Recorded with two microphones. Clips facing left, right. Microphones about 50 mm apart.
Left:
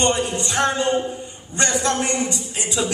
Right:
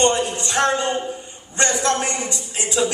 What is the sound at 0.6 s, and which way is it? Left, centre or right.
Speech, centre.